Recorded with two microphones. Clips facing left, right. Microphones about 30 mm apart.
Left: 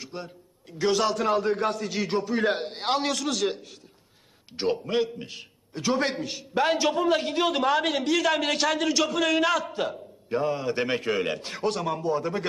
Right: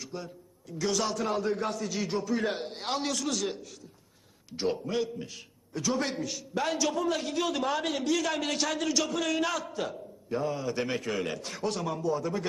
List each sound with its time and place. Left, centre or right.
0.0 s a man's voice: left
3.0 s a man's voice: centre
4.8 s a man's voice: left
7.7 s a man's voice: centre
9.7 s a man's voice: left
12.0 s a man's voice: left